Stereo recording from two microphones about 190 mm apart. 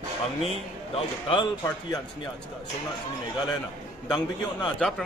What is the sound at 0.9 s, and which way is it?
Speech, 25° left (ahead or behind).